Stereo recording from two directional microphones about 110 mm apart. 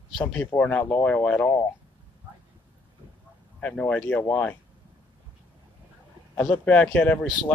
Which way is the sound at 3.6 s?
10° left (ahead or behind).